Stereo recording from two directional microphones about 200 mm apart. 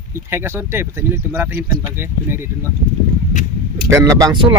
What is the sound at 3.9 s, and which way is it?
Speech, 15° right (ahead or behind).